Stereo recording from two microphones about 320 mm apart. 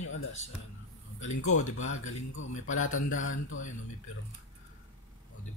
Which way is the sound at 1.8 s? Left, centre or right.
Left.